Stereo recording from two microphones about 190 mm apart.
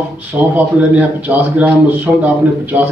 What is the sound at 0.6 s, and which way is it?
A man's voice, 10° right (ahead or behind).